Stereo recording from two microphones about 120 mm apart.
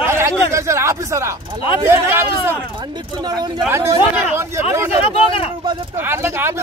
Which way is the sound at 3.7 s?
20° right (ahead or behind).